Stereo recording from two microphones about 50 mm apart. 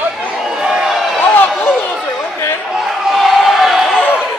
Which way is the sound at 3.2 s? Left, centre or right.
Centre.